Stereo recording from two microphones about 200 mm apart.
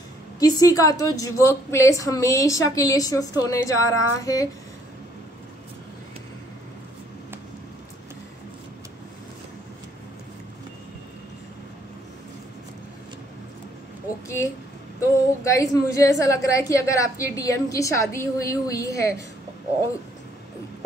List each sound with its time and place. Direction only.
0.4 s a woman's voice: 20° left (ahead or behind)
15.0 s a woman's voice: 15° left (ahead or behind)